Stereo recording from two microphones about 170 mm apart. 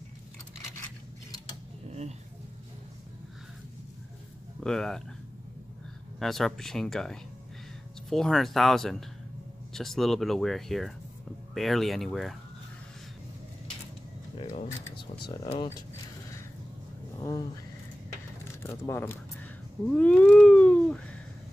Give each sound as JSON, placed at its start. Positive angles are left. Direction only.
{"t": 1.9, "sound": "a sound", "side_deg": -40}
{"t": 4.6, "sound": "speech", "side_deg": 5}
{"t": 6.1, "sound": "speech", "side_deg": 0}
{"t": 14.3, "sound": "speech", "side_deg": 35}
{"t": 17.2, "sound": "vehicle", "side_deg": 20}
{"t": 18.6, "sound": "speech", "side_deg": 15}
{"t": 19.9, "sound": "a sound", "side_deg": 5}